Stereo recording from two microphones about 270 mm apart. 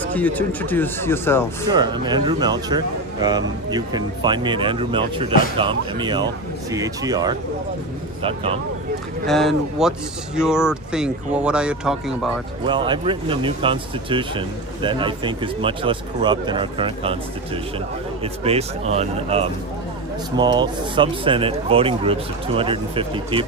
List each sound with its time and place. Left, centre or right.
0.1 s speech: centre
1.7 s speech: centre
9.2 s speech: centre
12.6 s speech: centre
18.2 s speech: right